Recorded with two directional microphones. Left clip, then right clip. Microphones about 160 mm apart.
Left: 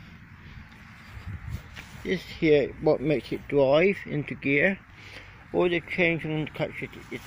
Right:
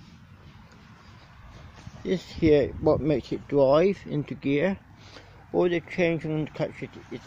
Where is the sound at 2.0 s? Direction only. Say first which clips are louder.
Right 1 dB; 35° right (ahead or behind).